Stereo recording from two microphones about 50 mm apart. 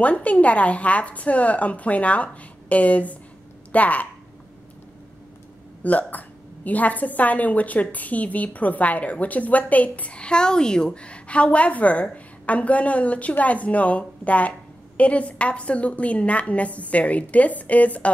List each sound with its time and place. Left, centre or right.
0.0 s a woman's voice: left
5.9 s a woman's voice: left